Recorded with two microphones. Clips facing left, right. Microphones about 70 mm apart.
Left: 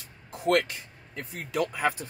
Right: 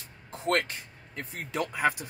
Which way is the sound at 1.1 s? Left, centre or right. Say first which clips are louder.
Left 3 dB; right.